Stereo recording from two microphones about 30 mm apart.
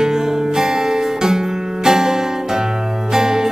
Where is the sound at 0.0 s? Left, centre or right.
Centre.